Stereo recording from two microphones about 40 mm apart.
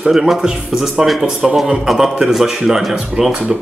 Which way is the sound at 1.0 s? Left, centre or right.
Centre.